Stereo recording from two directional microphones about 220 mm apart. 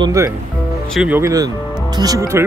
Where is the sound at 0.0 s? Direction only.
15° right (ahead or behind).